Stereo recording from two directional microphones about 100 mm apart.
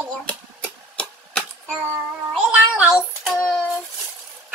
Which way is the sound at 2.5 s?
15° right (ahead or behind).